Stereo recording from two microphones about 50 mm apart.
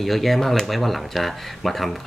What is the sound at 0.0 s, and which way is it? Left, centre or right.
Speech, centre.